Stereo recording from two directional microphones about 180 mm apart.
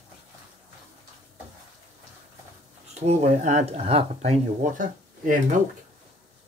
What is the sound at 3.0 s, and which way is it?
Speech, 40° right (ahead or behind).